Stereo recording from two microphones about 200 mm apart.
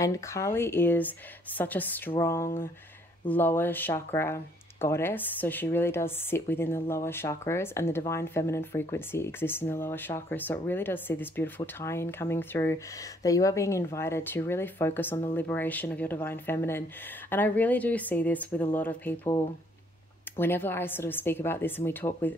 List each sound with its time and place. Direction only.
0.0 s speech: 15° left (ahead or behind)
20.3 s speech: 10° left (ahead or behind)